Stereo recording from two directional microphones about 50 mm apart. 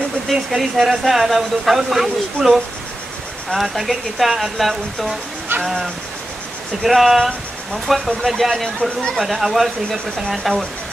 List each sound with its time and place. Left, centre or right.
0.3 s speech: centre
5.5 s a sound: right
6.8 s speech: centre
8.7 s speech: centre
9.1 s speech: centre